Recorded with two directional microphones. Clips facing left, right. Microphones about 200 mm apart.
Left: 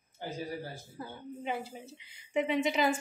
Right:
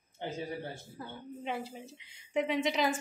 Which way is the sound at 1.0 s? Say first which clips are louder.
Left 1 dB; 5° left (ahead or behind).